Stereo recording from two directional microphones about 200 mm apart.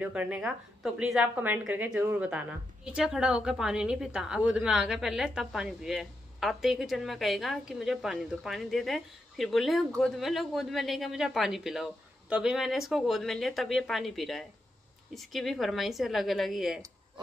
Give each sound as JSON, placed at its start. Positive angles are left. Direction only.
{"t": 0.0, "sound": "a woman's voice", "side_deg": -5}